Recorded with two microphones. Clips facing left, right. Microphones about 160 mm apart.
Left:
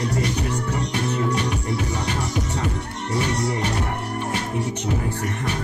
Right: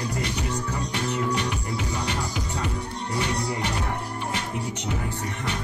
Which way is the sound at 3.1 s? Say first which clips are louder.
Left 4 dB; 65° left (ahead or behind).